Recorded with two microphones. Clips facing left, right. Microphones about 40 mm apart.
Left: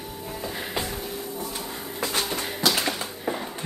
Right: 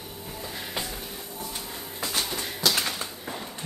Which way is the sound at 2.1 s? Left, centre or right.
Left.